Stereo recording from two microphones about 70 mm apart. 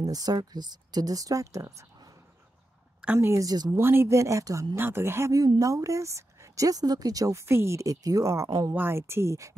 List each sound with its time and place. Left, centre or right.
0.0 s speech: right
3.0 s a woman's voice: centre
3.3 s speech: right
3.7 s speech: right
4.7 s speech: right
5.3 s speech: right
7.9 s speech: right
8.5 s speech: right
8.7 s speech: right